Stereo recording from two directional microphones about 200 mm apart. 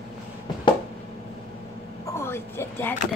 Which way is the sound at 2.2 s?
10° left (ahead or behind).